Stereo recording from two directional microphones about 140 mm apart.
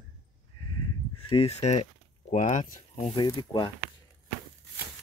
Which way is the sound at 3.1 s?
35° left (ahead or behind).